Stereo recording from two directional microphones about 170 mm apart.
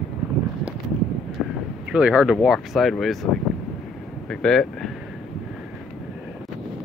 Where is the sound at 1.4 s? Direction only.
Centre (ahead or behind).